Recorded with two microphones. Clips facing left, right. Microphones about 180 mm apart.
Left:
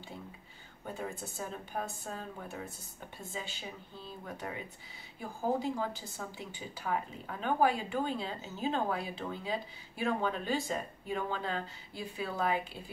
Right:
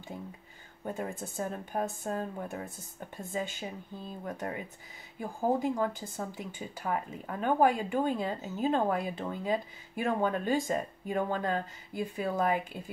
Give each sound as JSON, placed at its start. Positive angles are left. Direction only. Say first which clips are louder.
{"t": 0.8, "sound": "speech", "louder": "right 4 dB", "side_deg": -50}
{"t": 5.6, "sound": "speech", "louder": "right 4 dB", "side_deg": -50}